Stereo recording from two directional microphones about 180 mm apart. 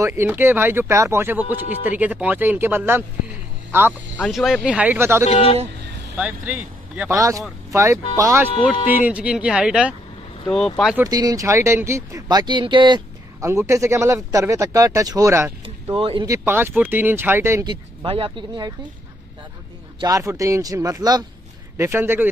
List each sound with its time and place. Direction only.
0.0 s speech: 15° right (ahead or behind)
4.2 s speech: centre (ahead or behind)
5.2 s speech: 35° left (ahead or behind)
6.1 s speech: 5° right (ahead or behind)
7.2 s speech: 20° right (ahead or behind)
9.0 s speech: 5° right (ahead or behind)
11.0 s speech: 20° right (ahead or behind)
15.6 s a sound: 30° right (ahead or behind)
16.3 s speech: 15° right (ahead or behind)
17.6 s speech: 30° right (ahead or behind)
20.0 s speech: 20° right (ahead or behind)